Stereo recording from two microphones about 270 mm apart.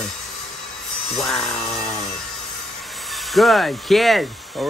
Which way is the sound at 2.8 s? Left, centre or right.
Centre.